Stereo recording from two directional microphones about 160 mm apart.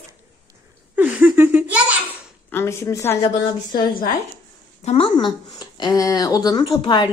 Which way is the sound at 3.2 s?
30° left (ahead or behind).